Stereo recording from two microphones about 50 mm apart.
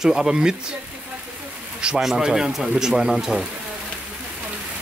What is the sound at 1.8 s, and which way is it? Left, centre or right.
Speech, centre.